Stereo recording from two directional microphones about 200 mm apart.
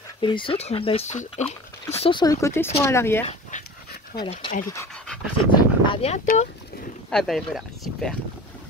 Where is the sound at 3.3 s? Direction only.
35° left (ahead or behind).